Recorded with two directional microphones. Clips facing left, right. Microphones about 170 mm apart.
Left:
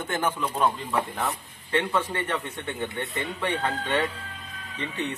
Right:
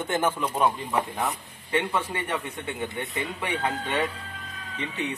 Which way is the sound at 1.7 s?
10° right (ahead or behind).